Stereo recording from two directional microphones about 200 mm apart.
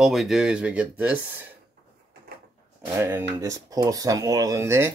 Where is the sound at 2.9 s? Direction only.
15° right (ahead or behind).